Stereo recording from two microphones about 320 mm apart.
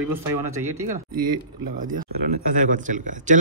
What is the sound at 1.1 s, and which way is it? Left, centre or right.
Speech, right.